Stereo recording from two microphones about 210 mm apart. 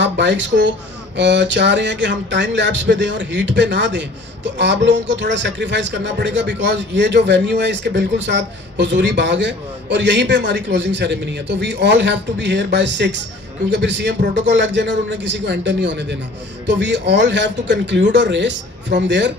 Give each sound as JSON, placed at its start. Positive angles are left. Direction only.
{"t": 0.0, "sound": "a man's voice", "side_deg": -60}